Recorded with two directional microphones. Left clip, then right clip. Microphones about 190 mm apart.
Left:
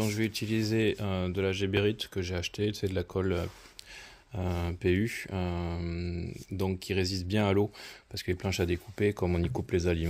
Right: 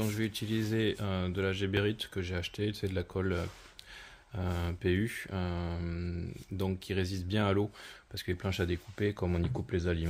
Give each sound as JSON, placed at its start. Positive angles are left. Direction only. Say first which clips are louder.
{"t": 0.0, "sound": "speech", "louder": "left 4 dB", "side_deg": 30}